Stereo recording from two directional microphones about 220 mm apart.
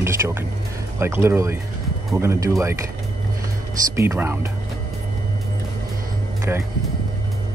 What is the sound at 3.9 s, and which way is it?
Speech, 10° right (ahead or behind).